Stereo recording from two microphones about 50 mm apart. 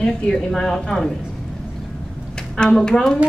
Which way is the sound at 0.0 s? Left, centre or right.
Centre.